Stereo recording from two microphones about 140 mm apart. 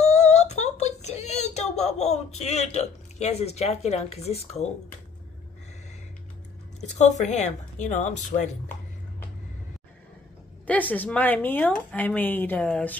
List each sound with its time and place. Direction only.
0.0 s a sound: 50° left (ahead or behind)
7.0 s speech: 55° left (ahead or behind)
10.7 s speech: 10° left (ahead or behind)